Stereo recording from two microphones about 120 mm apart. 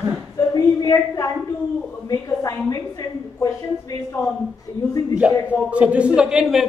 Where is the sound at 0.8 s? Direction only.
25° left (ahead or behind).